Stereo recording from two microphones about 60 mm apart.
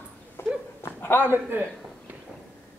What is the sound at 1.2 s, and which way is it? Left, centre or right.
Speech, right.